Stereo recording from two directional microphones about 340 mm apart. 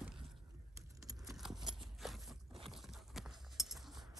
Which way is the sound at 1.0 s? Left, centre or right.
Centre.